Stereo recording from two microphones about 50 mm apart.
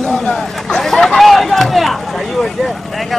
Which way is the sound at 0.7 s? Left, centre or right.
Centre.